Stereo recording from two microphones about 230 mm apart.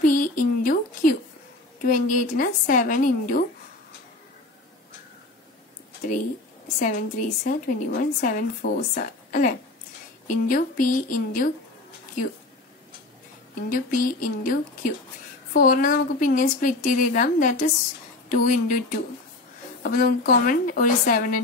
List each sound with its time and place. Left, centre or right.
0.0 s a sound: left
1.8 s a woman's voice: left
6.8 s a woman's voice: left
13.6 s a woman's voice: left